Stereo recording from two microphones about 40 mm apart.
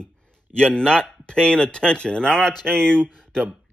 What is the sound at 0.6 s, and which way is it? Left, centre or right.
Speech, left.